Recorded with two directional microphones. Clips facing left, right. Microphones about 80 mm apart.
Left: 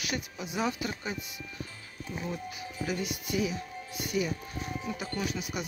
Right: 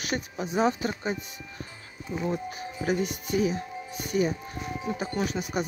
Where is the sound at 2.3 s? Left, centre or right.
Right.